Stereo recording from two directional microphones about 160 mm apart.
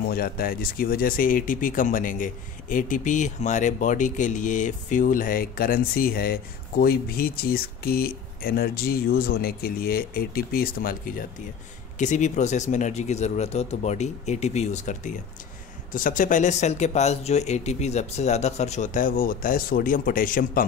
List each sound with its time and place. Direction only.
0.1 s speech: 65° left (ahead or behind)
12.0 s speech: 50° left (ahead or behind)